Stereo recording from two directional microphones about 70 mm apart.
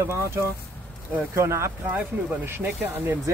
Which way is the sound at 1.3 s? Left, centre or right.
Right.